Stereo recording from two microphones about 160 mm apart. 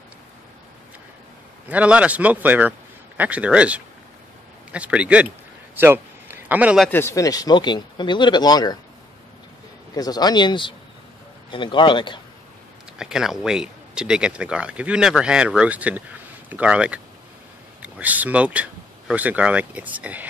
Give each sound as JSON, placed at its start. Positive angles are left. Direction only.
{"t": 1.7, "sound": "speech", "side_deg": -10}
{"t": 5.8, "sound": "a sound", "side_deg": -10}
{"t": 6.9, "sound": "speech", "side_deg": 15}
{"t": 9.9, "sound": "a man's voice", "side_deg": 25}
{"t": 12.9, "sound": "speech", "side_deg": -5}